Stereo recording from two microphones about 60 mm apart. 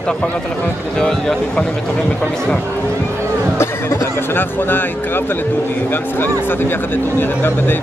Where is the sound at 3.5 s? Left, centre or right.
Left.